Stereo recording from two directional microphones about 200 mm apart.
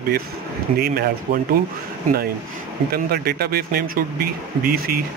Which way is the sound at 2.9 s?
50° right (ahead or behind).